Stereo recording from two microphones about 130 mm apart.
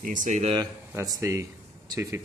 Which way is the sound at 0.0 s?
90° right.